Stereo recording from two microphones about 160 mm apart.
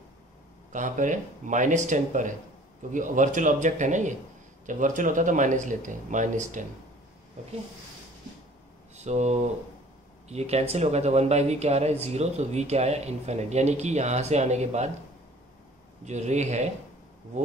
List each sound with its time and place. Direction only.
0.7 s speech: 50° right (ahead or behind)
8.9 s speech: 45° right (ahead or behind)
16.1 s speech: 45° right (ahead or behind)